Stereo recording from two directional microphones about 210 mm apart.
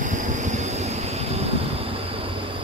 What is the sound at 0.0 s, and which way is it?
Vehicle, 35° right (ahead or behind).